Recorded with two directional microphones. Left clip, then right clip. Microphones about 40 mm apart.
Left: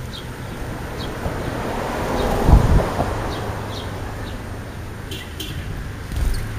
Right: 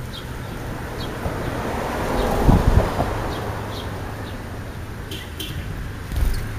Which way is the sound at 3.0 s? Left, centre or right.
Centre.